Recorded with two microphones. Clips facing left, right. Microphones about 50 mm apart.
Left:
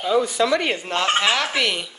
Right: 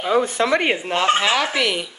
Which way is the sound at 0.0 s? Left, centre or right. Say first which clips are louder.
Right 1 dB; right.